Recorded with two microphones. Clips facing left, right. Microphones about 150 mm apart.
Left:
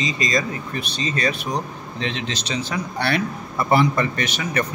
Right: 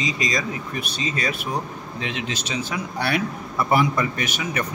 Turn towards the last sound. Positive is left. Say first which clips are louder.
# left 2 dB
turn(degrees=-10)  # may be behind; listen again after turning